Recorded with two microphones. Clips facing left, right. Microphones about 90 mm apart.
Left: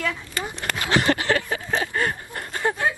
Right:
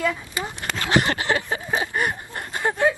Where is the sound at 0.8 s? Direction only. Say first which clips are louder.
Even; 20° right (ahead or behind).